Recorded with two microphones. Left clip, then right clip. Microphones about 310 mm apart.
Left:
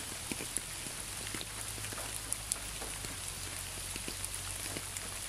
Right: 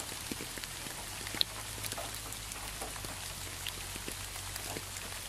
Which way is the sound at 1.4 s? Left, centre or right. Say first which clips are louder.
Right 11 dB; right.